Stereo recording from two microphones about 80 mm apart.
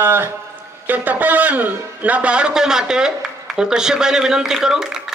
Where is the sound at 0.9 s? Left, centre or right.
Right.